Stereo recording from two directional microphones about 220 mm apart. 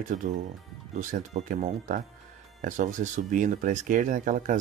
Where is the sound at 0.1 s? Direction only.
30° right (ahead or behind).